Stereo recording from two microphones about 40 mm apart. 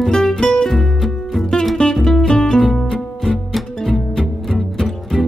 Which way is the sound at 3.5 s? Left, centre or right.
Centre.